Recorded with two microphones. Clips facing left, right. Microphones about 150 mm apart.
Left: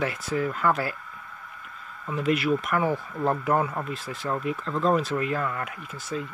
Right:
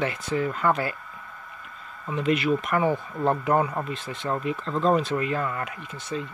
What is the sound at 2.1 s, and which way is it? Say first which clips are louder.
Speech: right 1 dB; 5° left (ahead or behind).